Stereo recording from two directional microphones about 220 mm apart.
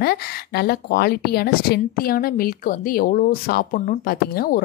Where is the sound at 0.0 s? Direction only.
45° left (ahead or behind).